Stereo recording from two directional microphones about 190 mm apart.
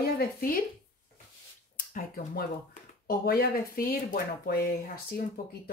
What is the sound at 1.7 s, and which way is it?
Speech, 45° left (ahead or behind).